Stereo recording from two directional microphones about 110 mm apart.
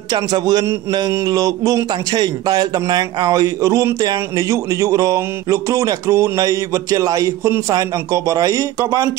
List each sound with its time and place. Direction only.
0.1 s a man's voice: 40° right (ahead or behind)